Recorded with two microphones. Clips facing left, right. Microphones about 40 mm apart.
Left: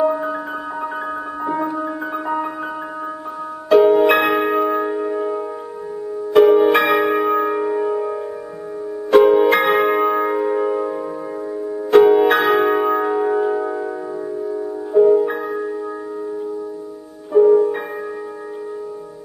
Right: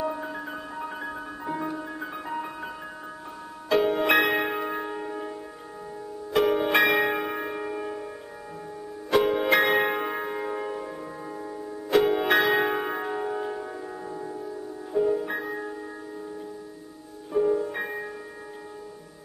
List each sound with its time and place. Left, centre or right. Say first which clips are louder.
0.0 s music: left 12 dB; centre
1.4 s music: left 10 dB; centre
3.6 s music: left 11 dB; centre
6.3 s music: left 12 dB; centre
6.7 s church bell: left 6 dB; centre
9.1 s music: left 10 dB; centre
11.9 s music: left 10 dB; centre; by 13.8 s left
15.0 s music: left 13 dB; centre
17.3 s music: left 12 dB; centre